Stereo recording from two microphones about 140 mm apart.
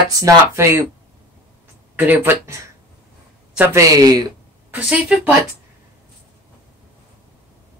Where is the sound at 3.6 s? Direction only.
20° right (ahead or behind).